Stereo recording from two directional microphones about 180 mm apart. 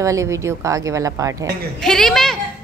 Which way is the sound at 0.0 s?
15° right (ahead or behind).